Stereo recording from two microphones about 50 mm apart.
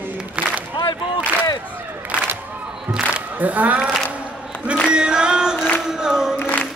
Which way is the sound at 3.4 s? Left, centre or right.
Right.